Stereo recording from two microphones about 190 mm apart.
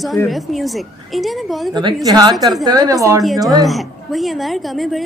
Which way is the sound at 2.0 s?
20° right (ahead or behind).